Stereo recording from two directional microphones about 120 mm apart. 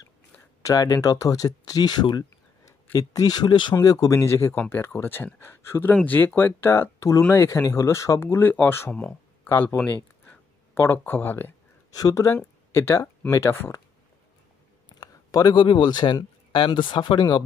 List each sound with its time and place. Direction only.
0.6 s speech: 25° left (ahead or behind)
10.2 s a sound: 15° left (ahead or behind)
11.9 s speech: 30° left (ahead or behind)
15.0 s speech: 35° left (ahead or behind)